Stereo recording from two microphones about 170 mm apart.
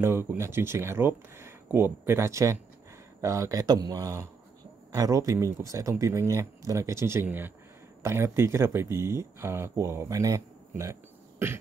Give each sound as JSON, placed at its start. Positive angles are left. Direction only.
{"t": 0.0, "sound": "speech", "side_deg": -15}